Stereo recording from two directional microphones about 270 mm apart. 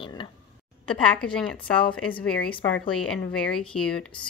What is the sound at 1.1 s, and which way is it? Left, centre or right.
A woman's voice, centre.